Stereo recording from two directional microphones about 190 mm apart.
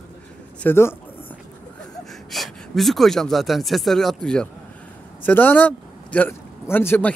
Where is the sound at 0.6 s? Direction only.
10° left (ahead or behind).